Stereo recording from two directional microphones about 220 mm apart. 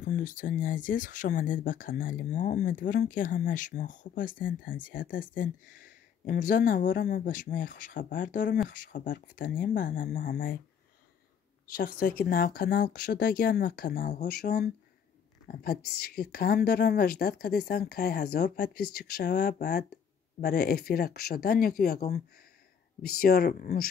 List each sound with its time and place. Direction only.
0.0 s speech: 35° left (ahead or behind)
10.1 s a woman's voice: 50° left (ahead or behind)
11.6 s a woman's voice: 40° left (ahead or behind)